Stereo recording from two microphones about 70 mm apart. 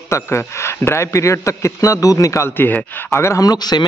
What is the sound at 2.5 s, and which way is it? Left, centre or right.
Speech, left.